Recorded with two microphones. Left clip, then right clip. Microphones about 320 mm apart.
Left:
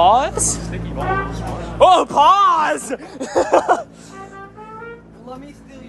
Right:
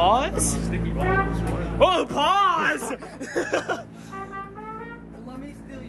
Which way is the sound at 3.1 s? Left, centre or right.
Centre.